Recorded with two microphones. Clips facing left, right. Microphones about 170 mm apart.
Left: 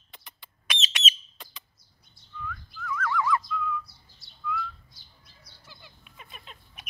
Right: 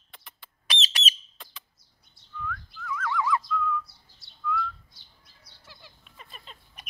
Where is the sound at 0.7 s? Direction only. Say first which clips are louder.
Even; 35° right (ahead or behind).